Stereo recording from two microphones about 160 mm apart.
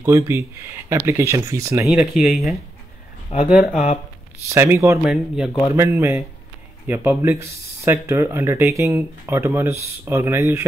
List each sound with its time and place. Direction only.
0.0 s speech: 20° right (ahead or behind)
1.9 s speech: 5° right (ahead or behind)
4.5 s speech: 15° right (ahead or behind)
5.1 s speech: 5° right (ahead or behind)
5.8 s speech: 15° right (ahead or behind)